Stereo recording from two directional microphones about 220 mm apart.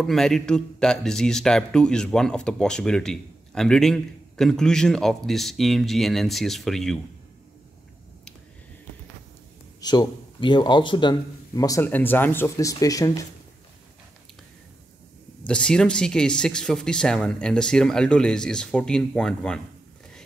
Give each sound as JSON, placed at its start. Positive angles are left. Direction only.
{"t": 0.0, "sound": "a man's voice", "side_deg": 0}
{"t": 9.8, "sound": "a man's voice", "side_deg": 20}
{"t": 15.4, "sound": "a man's voice", "side_deg": 5}